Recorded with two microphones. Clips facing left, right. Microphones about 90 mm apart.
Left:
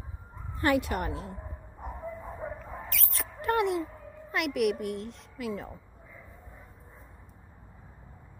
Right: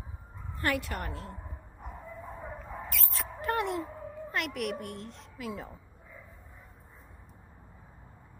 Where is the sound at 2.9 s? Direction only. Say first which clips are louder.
Right 1 dB; centre (ahead or behind).